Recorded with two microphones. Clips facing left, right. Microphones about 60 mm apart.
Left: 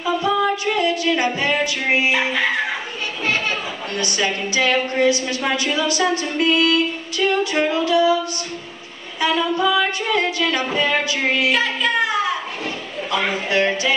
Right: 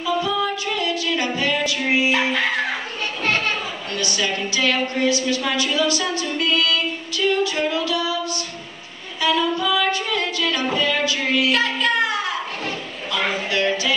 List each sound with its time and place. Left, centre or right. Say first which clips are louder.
0.0 s music: left 3 dB; left
2.1 s fowl: left 1 dB; centre
3.9 s a woman's voice: left 2 dB; left
9.2 s a woman's voice: left 2 dB; left
11.5 s music: even; centre
13.5 s a woman's voice: left 4 dB; left